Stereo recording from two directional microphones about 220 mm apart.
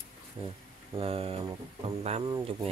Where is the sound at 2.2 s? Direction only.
15° right (ahead or behind).